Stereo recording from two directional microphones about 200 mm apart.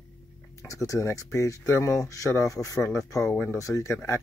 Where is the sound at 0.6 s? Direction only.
15° left (ahead or behind).